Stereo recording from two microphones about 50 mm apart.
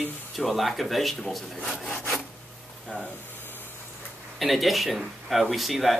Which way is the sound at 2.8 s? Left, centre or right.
Left.